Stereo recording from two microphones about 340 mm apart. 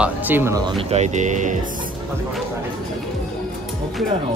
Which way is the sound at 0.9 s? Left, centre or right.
Right.